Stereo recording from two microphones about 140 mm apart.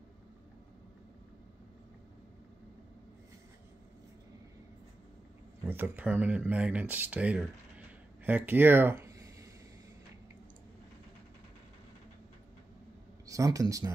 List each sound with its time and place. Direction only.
5.7 s speech: 15° right (ahead or behind)
8.2 s a sound: 15° right (ahead or behind)
13.3 s speech: 25° right (ahead or behind)